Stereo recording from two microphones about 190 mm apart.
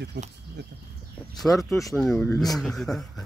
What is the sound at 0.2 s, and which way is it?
Speech, 65° right (ahead or behind).